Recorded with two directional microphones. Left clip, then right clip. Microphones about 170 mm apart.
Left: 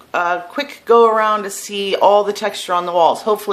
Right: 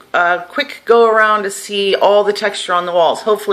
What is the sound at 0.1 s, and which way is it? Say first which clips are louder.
Speech: right 4 dB; 10° left (ahead or behind).